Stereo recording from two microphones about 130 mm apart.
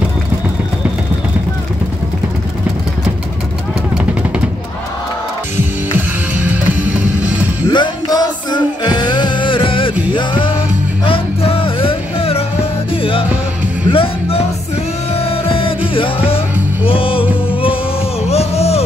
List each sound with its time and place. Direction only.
5.9 s music: 15° right (ahead or behind)
7.7 s music: 35° left (ahead or behind)
18.2 s a sound: 55° left (ahead or behind)